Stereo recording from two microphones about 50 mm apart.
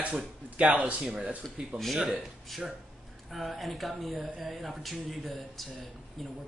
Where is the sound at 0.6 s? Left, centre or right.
Right.